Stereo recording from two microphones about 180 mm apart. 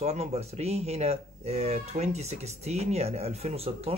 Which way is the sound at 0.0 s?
35° right (ahead or behind).